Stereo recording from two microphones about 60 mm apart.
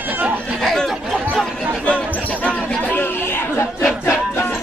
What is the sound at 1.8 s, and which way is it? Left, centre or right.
Basketball bounce, left.